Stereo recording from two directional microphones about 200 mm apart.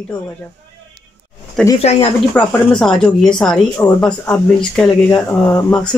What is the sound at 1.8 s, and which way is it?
Speech, 30° left (ahead or behind).